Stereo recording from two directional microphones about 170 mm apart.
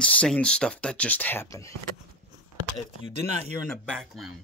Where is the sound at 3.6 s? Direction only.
5° left (ahead or behind).